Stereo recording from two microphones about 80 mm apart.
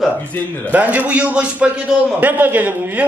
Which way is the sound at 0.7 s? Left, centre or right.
Centre.